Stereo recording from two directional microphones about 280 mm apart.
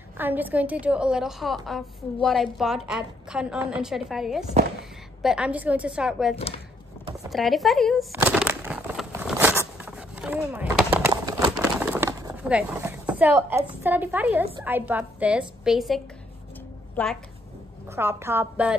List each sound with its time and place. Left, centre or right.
0.2 s a woman's voice: centre
6.3 s speech: left
7.2 s a woman's voice: centre
8.1 s a sound: centre
16.9 s a woman's voice: centre
17.9 s a woman's voice: centre